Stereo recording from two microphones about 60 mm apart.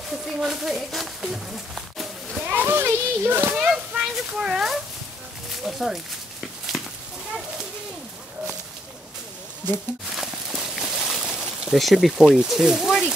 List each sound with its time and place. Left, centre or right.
0.4 s speech: centre
2.4 s a child's voice: right
3.5 s speech: centre
6.7 s cat: centre
10.1 s a sound: centre
11.7 s speech: centre